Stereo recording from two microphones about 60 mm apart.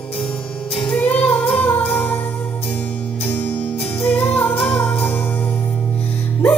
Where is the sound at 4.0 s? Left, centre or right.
Left.